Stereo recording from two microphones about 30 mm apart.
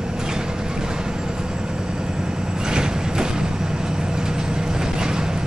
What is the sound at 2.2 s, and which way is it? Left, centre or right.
Vehicle, right.